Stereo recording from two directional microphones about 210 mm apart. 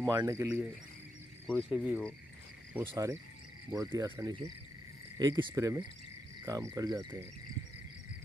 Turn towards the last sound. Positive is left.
turn(degrees=-15)  # may be behind; listen again after turning